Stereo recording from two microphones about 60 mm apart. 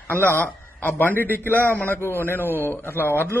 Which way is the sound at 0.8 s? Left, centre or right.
Left.